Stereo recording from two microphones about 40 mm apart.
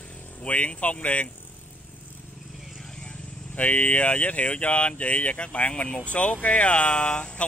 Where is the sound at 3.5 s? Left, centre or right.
Left.